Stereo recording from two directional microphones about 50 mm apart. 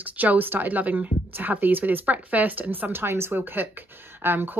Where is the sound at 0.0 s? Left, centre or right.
Right.